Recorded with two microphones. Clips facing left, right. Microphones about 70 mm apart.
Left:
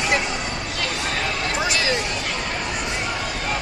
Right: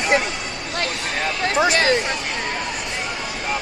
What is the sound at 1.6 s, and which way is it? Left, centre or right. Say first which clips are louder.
Speech: right 7 dB; right.